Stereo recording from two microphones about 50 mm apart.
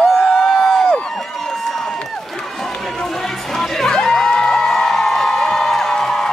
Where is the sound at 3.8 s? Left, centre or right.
Centre.